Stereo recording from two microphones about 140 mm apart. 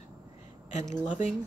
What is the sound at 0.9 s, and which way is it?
Speech, 55° left (ahead or behind).